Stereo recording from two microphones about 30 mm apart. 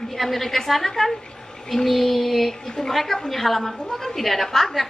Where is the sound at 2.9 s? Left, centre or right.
Centre.